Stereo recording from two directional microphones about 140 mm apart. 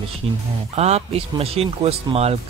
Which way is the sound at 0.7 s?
50° right (ahead or behind).